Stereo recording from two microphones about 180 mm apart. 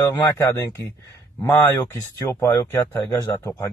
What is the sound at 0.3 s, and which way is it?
A man's voice, 15° left (ahead or behind).